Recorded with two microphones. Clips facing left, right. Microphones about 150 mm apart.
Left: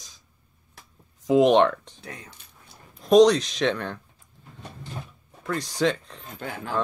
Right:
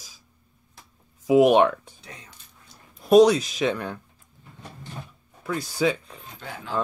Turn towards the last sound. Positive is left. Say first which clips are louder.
# left 4 dB
turn(degrees=50)  # may be behind; listen again after turning